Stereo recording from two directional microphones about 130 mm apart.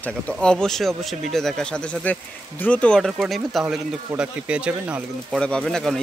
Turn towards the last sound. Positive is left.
turn(degrees=5)  # may be behind; listen again after turning